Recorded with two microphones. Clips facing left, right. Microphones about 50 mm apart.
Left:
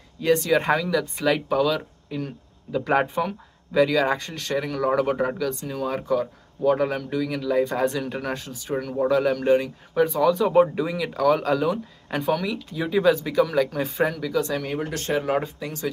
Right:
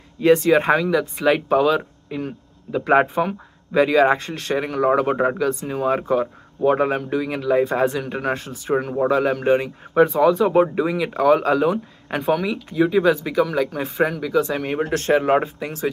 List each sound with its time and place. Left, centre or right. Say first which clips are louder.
0.2 s speech: right 6 dB; right
0.5 s speech: right 5 dB; right
8.4 s speech: right 6 dB; right
14.9 s speech: right 8 dB; right